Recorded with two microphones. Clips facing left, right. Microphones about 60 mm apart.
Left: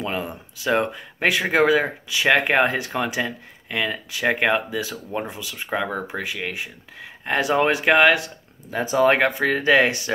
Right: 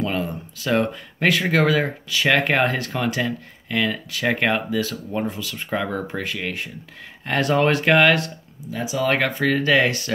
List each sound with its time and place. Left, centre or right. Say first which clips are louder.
0.0 s speech: right 3 dB; centre
8.6 s speech: left 5 dB; left
9.1 s speech: left 1 dB; centre